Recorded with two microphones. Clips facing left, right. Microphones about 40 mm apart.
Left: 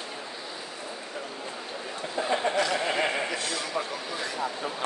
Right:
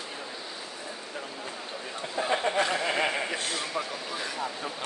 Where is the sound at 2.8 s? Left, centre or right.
Centre.